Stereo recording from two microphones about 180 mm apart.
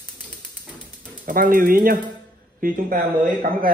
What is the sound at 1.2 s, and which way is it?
Speech, 50° right (ahead or behind).